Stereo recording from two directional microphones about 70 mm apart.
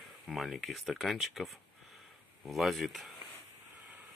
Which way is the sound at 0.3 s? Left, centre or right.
Centre.